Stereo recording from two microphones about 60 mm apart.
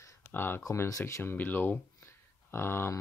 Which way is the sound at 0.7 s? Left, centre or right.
Left.